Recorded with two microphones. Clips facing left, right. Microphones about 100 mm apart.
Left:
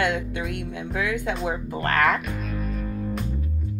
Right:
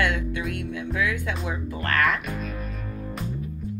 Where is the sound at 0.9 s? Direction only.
30° left (ahead or behind).